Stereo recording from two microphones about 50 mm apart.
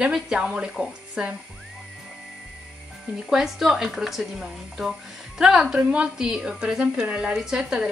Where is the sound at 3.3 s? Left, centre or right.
Centre.